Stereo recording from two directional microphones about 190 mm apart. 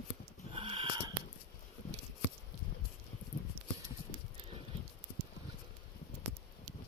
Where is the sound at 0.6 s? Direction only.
30° right (ahead or behind).